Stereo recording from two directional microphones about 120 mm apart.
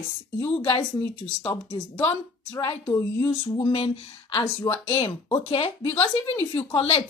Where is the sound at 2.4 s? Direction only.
30° left (ahead or behind).